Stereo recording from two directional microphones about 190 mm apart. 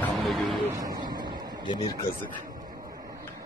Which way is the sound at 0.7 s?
20° right (ahead or behind).